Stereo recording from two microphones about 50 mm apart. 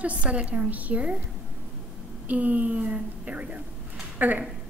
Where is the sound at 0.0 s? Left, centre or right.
Right.